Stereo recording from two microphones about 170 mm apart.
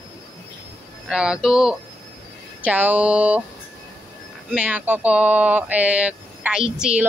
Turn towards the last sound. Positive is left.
turn(degrees=-5)  # may be behind; listen again after turning